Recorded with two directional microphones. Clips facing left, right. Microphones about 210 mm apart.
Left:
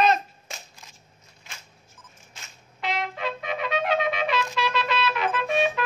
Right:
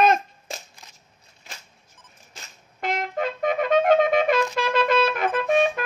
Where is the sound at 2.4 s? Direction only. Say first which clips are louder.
Right 2 dB; 50° right (ahead or behind).